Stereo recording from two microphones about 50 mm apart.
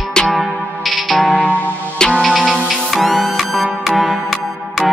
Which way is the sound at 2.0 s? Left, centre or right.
Centre.